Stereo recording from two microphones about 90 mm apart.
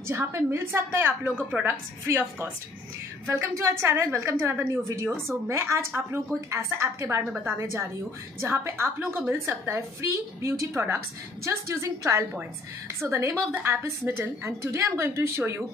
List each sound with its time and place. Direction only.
0.1 s a woman's voice: 30° right (ahead or behind)
3.3 s a woman's voice: 30° right (ahead or behind)